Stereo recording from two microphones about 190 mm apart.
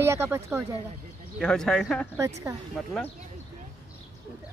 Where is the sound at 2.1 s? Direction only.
15° right (ahead or behind).